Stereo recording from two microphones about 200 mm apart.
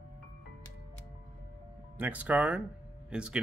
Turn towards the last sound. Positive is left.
turn(degrees=-5)  # may be behind; listen again after turning